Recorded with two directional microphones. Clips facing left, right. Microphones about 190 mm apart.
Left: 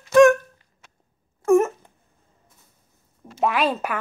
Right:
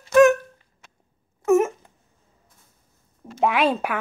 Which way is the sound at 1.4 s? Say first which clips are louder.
Left 1 dB; 5° right (ahead or behind).